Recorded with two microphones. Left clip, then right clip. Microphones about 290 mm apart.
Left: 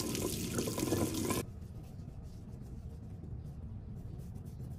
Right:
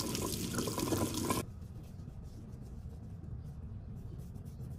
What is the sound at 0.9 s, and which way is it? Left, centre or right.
Water, right.